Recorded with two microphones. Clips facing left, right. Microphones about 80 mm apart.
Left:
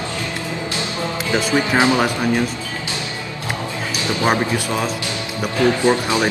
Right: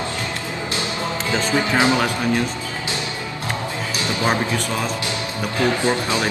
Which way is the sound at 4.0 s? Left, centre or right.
Left.